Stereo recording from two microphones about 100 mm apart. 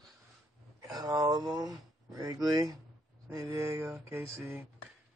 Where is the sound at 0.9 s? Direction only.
40° right (ahead or behind); by 4.6 s 25° right (ahead or behind).